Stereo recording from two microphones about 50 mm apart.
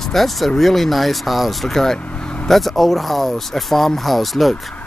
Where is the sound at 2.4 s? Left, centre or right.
Centre.